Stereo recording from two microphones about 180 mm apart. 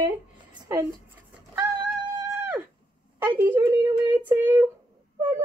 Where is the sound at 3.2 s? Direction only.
10° right (ahead or behind).